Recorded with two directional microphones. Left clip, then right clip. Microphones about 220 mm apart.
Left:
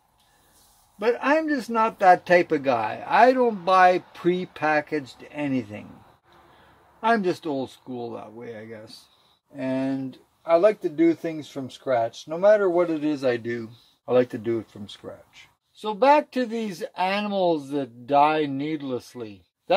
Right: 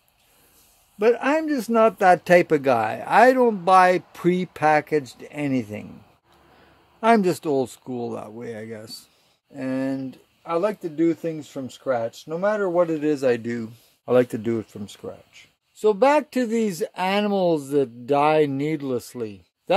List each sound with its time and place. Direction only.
0.9 s speech: 45° right (ahead or behind)
7.0 s speech: 45° right (ahead or behind)